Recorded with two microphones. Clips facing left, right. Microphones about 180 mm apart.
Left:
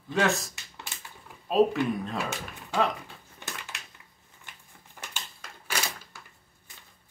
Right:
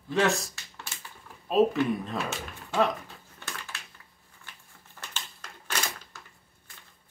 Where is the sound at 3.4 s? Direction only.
15° left (ahead or behind).